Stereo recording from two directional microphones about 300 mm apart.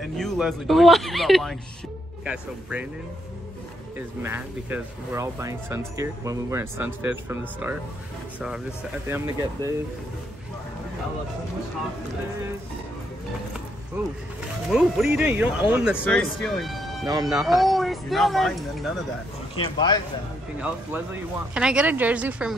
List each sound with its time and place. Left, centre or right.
0.0 s speech: centre
4.2 s speech: centre
9.0 s speech: centre
14.7 s speech: centre
19.5 s a man's voice: centre
20.6 s speech: centre